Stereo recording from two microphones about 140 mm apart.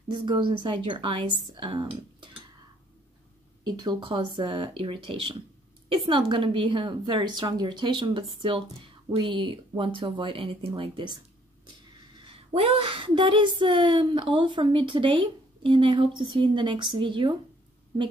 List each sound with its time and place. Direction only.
0.1 s speech: 35° right (ahead or behind)
3.6 s speech: 30° right (ahead or behind)
12.3 s speech: 40° right (ahead or behind)